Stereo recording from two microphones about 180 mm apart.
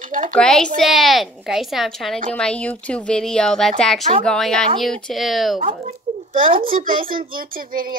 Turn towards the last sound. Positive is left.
turn(degrees=-55)  # may be behind; listen again after turning